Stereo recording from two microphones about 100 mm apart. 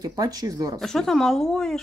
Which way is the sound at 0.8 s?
5° left (ahead or behind).